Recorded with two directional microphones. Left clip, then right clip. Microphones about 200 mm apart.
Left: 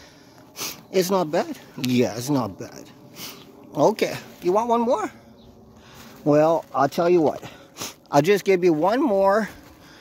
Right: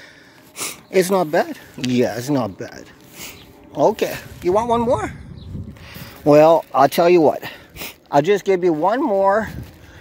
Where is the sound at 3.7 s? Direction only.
15° left (ahead or behind).